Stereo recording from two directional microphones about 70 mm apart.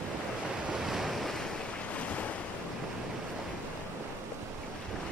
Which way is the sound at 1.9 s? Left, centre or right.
Centre.